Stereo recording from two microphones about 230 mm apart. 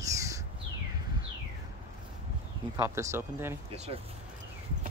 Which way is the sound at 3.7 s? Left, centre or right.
Right.